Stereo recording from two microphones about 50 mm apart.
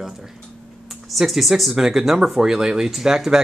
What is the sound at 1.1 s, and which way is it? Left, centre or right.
Speech, centre.